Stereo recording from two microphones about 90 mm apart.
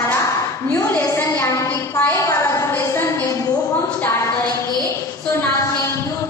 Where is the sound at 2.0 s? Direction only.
25° left (ahead or behind).